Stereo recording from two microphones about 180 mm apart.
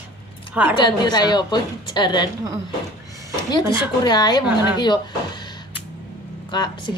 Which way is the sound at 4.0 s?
25° left (ahead or behind).